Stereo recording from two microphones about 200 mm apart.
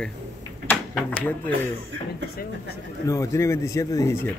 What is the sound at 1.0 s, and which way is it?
Speech, 5° left (ahead or behind).